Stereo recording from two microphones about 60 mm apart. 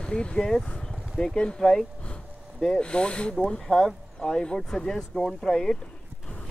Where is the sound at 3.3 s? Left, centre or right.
Centre.